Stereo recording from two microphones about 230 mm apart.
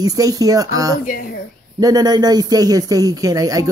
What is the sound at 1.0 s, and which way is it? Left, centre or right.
Speech, left.